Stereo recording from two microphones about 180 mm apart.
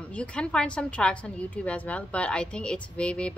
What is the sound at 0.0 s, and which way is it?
A woman's voice, 5° left (ahead or behind).